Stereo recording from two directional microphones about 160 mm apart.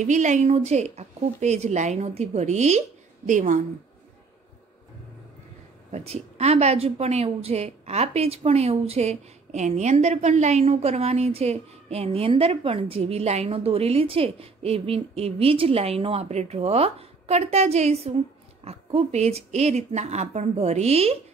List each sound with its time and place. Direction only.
0.0 s a woman's voice: 50° right (ahead or behind)
5.9 s a woman's voice: 40° right (ahead or behind)